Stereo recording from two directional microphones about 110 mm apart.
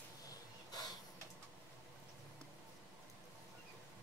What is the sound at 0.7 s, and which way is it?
Tick-tock, 35° left (ahead or behind).